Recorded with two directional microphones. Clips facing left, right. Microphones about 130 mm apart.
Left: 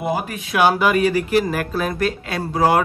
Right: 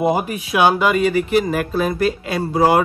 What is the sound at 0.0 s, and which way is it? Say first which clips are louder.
Speech: right 5 dB; 20° right (ahead or behind).